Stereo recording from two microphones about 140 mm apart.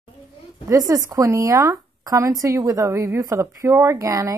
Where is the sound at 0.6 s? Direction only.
25° right (ahead or behind).